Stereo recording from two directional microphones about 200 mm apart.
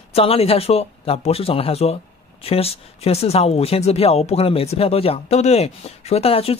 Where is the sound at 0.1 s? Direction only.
30° left (ahead or behind).